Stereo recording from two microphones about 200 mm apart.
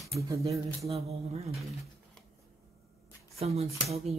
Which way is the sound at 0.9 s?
30° right (ahead or behind).